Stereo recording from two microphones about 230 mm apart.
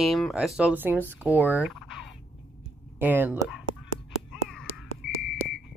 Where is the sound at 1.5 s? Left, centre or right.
Centre.